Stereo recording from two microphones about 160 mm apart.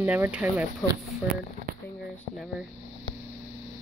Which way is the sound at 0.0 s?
10° right (ahead or behind).